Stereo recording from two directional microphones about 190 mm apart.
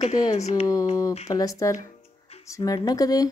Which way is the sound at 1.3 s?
15° left (ahead or behind).